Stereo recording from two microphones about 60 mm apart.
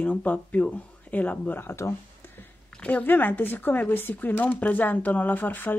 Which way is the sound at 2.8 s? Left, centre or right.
Left.